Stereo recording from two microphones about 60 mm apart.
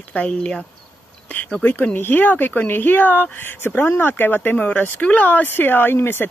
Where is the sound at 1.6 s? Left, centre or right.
Left.